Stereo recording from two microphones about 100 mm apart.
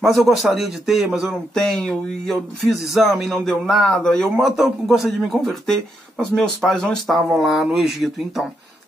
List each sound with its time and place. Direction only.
0.0 s speech: centre (ahead or behind)